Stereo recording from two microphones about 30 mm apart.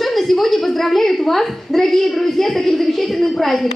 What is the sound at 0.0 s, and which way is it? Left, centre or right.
A woman's voice, centre.